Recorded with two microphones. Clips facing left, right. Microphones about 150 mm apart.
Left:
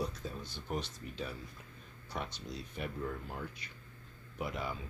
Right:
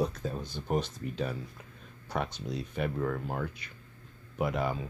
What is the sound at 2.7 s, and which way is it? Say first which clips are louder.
Speech: right 8 dB; 75° right (ahead or behind).